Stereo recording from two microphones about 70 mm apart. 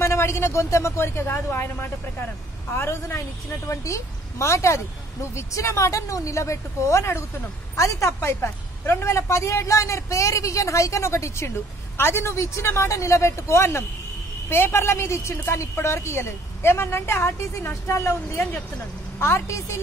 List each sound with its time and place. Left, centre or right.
0.0 s a woman's voice: left
3.6 s a woman's voice: left